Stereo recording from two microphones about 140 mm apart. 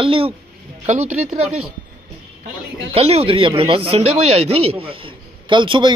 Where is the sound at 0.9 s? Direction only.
60° right (ahead or behind).